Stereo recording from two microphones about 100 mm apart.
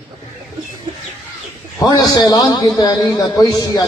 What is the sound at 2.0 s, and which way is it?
A man's voice, 45° left (ahead or behind).